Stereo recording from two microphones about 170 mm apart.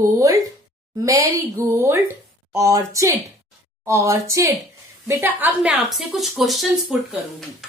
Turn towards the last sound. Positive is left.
turn(degrees=0)  # may be behind; listen again after turning